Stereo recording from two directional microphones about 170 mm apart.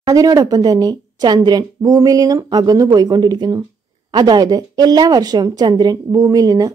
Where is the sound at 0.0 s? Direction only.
20° right (ahead or behind).